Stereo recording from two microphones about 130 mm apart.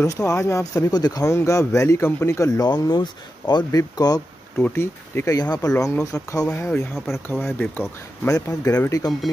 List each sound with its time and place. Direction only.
0.0 s speech: 25° left (ahead or behind)
4.6 s speech: 15° left (ahead or behind)
8.3 s speech: 25° left (ahead or behind)